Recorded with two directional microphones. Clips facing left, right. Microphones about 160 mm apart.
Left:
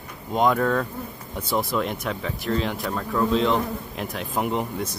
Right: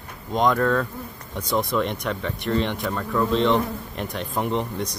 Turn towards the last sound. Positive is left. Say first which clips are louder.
# even
turn(degrees=5)  # may be behind; listen again after turning